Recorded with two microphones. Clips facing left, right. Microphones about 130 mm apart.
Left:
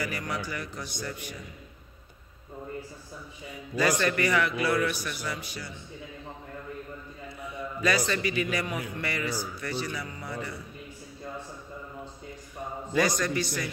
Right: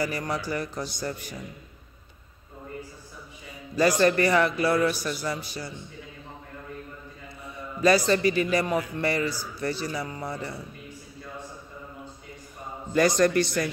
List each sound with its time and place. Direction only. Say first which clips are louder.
0.0 s a man's voice: right 4 dB; 35° right (ahead or behind)
3.7 s a man's voice: right 5 dB; 35° right (ahead or behind)
7.8 s a man's voice: right 7 dB; 35° right (ahead or behind)
12.9 s a man's voice: right 6 dB; 55° right (ahead or behind)